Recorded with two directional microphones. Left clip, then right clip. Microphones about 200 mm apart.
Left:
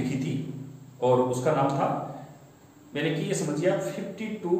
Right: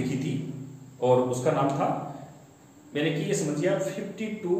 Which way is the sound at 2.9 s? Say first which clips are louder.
Right 1 dB; 15° right (ahead or behind).